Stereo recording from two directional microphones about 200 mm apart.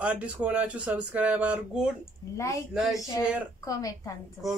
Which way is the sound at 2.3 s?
15° left (ahead or behind).